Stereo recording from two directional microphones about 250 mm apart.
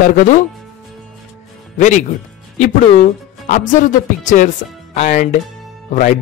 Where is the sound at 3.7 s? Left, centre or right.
Left.